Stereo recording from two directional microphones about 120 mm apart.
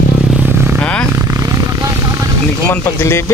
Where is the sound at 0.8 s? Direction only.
10° left (ahead or behind).